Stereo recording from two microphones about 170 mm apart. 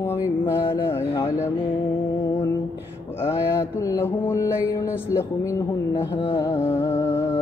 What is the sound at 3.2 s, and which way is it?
Music, 15° left (ahead or behind).